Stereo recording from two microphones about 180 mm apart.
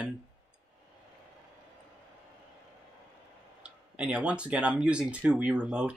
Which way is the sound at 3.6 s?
5° right (ahead or behind).